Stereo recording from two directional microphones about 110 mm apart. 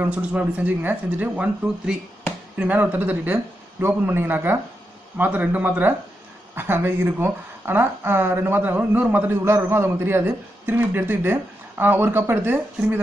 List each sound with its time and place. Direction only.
0.0 s speech: 10° right (ahead or behind)